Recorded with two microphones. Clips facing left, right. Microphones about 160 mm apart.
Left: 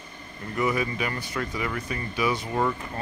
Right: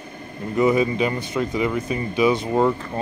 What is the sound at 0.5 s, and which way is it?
Speech, 20° right (ahead or behind).